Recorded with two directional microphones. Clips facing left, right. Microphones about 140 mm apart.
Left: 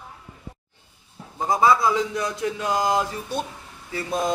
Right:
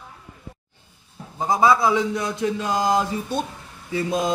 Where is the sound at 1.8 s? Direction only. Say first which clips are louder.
Right 2 dB; 25° right (ahead or behind).